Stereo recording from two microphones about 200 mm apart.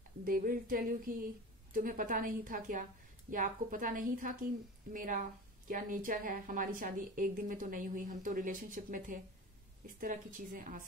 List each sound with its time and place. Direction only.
0.2 s a woman's voice: 45° right (ahead or behind)